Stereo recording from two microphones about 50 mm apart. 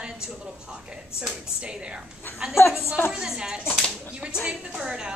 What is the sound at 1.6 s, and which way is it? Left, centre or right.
Speech, centre.